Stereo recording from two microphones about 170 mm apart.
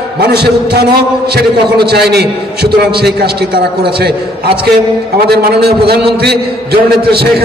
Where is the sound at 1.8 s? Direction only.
70° right (ahead or behind).